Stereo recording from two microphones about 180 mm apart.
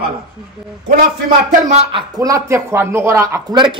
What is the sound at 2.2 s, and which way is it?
A man's voice, 20° right (ahead or behind).